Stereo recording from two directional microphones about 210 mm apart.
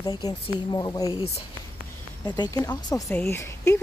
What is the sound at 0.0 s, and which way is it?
A woman's voice, 20° left (ahead or behind).